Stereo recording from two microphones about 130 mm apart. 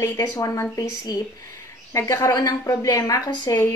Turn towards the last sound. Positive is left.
turn(degrees=30)  # may be behind; listen again after turning